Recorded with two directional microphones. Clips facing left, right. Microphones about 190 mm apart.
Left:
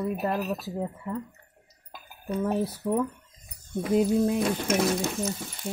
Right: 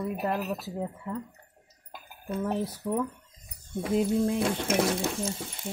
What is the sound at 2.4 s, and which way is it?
Music, 10° left (ahead or behind).